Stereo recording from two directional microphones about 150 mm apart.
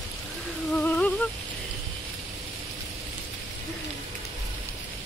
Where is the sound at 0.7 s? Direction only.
10° left (ahead or behind).